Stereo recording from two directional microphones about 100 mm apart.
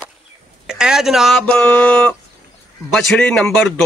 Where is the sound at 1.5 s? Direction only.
15° left (ahead or behind).